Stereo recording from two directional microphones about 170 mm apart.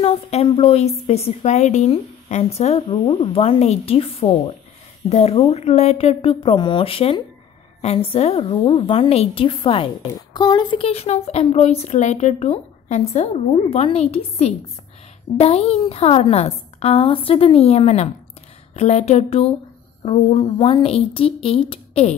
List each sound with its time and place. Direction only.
0.0 s speech: 35° left (ahead or behind)